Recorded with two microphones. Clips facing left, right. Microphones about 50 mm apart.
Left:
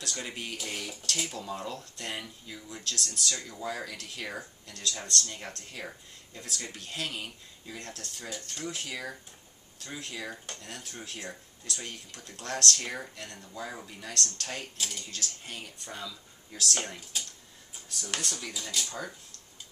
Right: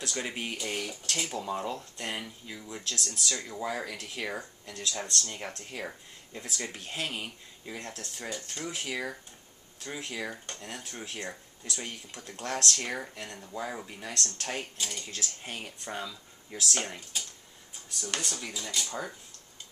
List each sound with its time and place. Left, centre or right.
0.0 s speech: centre
0.6 s speech: centre
1.3 s speech: right
10.2 s speech: centre
10.6 s speech: centre
12.7 s speech: centre; by 16.6 s right
16.7 s speech: centre
18.0 s speech: centre
18.9 s speech: centre